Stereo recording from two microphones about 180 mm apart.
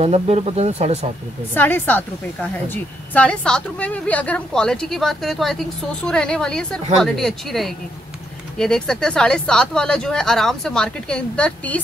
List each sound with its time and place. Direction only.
0.0 s speech: 35° right (ahead or behind)
1.5 s a woman's voice: 10° left (ahead or behind)